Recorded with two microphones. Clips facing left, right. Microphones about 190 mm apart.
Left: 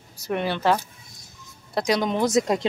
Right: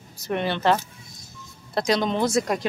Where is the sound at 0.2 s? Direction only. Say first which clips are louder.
Even; 10° left (ahead or behind).